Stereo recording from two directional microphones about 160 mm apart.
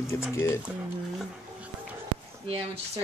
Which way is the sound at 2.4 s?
35° right (ahead or behind).